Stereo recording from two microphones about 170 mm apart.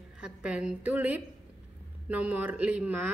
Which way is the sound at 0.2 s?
5° right (ahead or behind).